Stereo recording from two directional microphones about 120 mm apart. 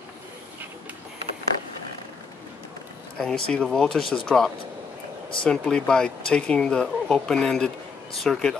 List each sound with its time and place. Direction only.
3.2 s speech: 5° left (ahead or behind)